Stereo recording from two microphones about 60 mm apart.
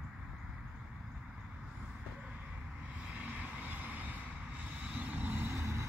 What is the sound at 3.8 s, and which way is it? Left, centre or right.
Vehicle, right.